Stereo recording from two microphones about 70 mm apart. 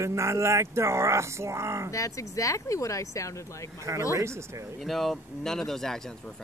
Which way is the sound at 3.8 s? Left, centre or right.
Right.